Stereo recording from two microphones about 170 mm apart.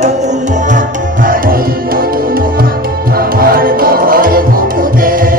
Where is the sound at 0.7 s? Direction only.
50° right (ahead or behind).